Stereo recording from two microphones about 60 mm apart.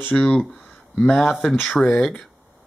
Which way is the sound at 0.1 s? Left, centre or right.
Centre.